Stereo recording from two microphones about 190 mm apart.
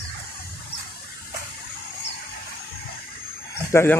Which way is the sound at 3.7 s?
15° left (ahead or behind).